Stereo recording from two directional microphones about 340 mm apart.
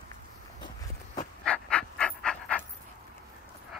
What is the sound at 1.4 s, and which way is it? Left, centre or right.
Pant, centre.